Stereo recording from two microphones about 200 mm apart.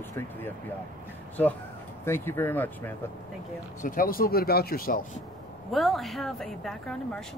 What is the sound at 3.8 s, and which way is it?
Speech, 45° left (ahead or behind).